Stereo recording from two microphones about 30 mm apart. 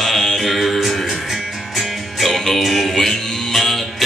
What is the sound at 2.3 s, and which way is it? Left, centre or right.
Music, centre.